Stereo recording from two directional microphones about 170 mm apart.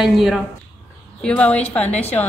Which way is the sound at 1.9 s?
40° left (ahead or behind).